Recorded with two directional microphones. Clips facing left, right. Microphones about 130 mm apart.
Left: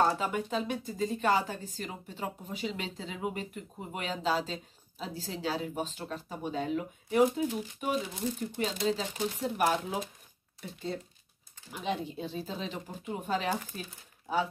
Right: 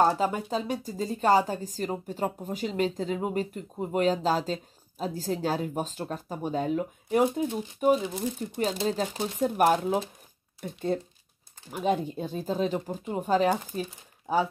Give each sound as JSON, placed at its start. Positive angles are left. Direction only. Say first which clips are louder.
{"t": 0.0, "sound": "speech", "louder": "right 4 dB", "side_deg": -35}